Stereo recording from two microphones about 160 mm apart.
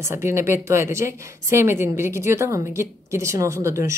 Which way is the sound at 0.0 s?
15° right (ahead or behind).